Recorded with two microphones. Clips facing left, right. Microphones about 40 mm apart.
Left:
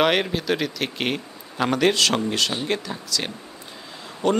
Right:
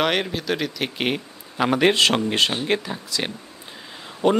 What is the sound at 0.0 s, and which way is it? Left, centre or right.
Speech, centre.